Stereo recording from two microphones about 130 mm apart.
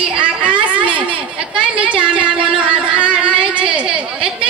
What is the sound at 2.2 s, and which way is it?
Music, 40° right (ahead or behind).